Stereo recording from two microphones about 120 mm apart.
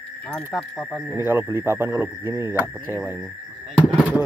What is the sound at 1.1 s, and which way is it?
Speech, 15° right (ahead or behind).